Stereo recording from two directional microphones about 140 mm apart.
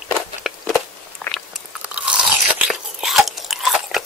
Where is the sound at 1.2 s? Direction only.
5° left (ahead or behind).